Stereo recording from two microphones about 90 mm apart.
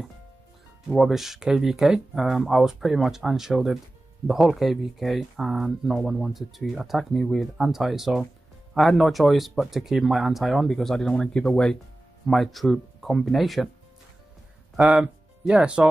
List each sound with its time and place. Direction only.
0.8 s speech: centre (ahead or behind)
14.8 s speech: 10° right (ahead or behind)